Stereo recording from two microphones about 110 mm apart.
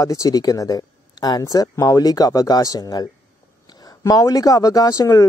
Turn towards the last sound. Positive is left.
turn(degrees=35)  # may be behind; listen again after turning